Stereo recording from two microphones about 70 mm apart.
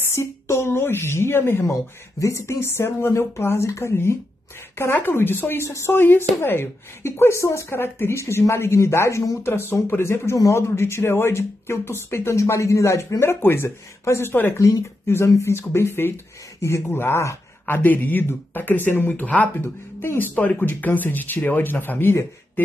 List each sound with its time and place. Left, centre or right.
0.0 s a woman's voice: left
1.7 s a woman's voice: left
5.6 s a woman's voice: left
13.2 s a woman's voice: left
14.6 s speech: left
15.5 s a woman's voice: left
17.6 s speech: left